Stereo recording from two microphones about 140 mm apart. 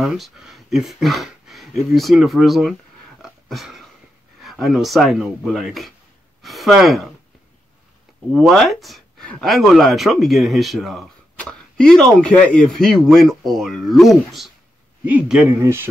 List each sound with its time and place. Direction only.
0.0 s speech: centre (ahead or behind)
3.2 s a sound: centre (ahead or behind)
4.4 s speech: centre (ahead or behind)
8.3 s a man's voice: centre (ahead or behind); by 15.9 s 15° right (ahead or behind)